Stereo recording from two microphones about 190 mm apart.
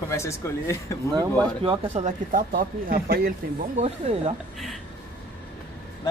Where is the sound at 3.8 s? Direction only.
35° right (ahead or behind).